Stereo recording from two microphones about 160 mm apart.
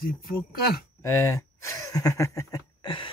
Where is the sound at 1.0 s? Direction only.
20° left (ahead or behind).